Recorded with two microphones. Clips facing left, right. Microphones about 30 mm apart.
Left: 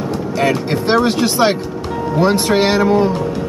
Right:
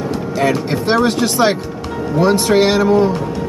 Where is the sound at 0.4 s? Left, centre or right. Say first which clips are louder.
Even; centre.